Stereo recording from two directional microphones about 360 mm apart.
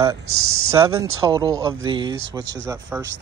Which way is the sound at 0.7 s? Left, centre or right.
Centre.